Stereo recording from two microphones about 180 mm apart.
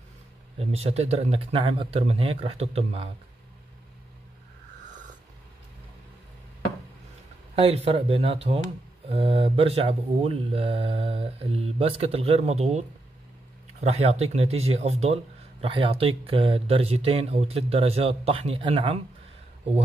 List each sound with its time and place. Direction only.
0.6 s speech: 35° right (ahead or behind)
7.5 s speech: 35° right (ahead or behind)